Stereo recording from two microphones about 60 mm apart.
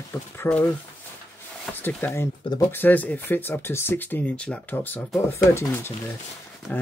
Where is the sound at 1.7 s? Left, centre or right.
Left.